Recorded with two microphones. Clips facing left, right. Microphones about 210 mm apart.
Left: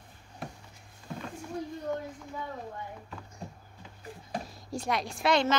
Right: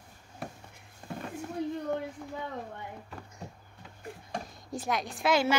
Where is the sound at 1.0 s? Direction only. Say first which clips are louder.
Right 1 dB; 55° right (ahead or behind).